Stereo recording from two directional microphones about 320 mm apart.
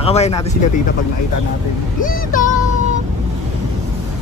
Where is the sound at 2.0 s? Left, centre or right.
Left.